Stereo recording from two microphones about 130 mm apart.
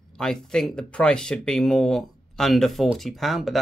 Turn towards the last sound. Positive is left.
turn(degrees=0)  # may be behind; listen again after turning